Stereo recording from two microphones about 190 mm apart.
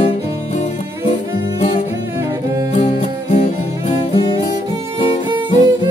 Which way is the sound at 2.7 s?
40° left (ahead or behind).